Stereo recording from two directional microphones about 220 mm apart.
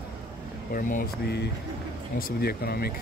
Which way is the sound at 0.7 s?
40° left (ahead or behind).